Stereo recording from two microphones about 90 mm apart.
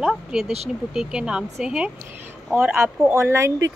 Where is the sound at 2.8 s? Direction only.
30° right (ahead or behind).